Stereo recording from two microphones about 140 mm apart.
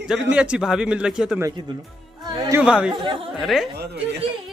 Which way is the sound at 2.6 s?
5° right (ahead or behind).